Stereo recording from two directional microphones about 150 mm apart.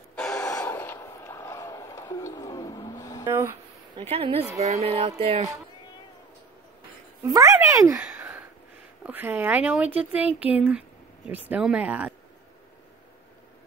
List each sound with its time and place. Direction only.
0.1 s gasp: 5° left (ahead or behind); by 3.3 s 20° left (ahead or behind)
3.3 s speech: 15° right (ahead or behind)
4.1 s music: 40° right (ahead or behind)
7.2 s speech: 25° right (ahead or behind)
8.0 s a sound: 10° right (ahead or behind)
9.0 s speech: 10° right (ahead or behind)